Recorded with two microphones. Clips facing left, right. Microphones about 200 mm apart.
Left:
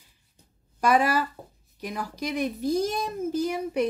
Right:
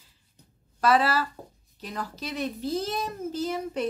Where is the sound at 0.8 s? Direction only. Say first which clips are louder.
Left 1 dB; 15° left (ahead or behind).